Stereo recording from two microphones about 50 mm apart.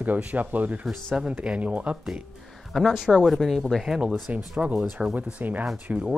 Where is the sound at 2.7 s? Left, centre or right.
Centre.